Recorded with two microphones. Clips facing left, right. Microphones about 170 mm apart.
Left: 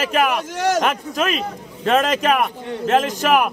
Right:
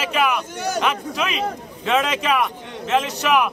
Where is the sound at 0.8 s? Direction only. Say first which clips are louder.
Left 2 dB; 45° left (ahead or behind).